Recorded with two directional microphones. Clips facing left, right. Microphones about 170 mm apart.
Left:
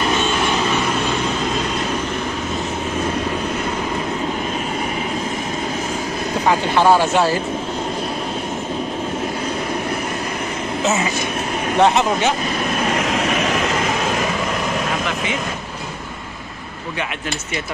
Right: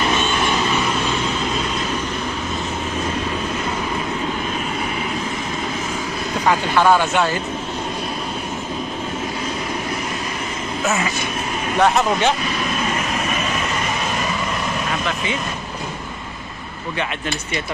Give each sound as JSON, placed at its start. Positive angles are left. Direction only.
{"t": 6.4, "sound": "speech", "side_deg": 25}
{"t": 11.8, "sound": "speech", "side_deg": 20}
{"t": 12.7, "sound": "train", "side_deg": 80}